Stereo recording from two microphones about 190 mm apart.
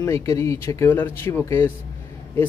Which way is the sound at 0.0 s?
15° left (ahead or behind).